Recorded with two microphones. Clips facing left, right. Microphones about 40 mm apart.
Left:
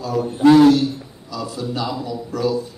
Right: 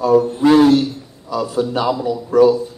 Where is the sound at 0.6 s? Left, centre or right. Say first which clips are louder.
Right 1 dB; right.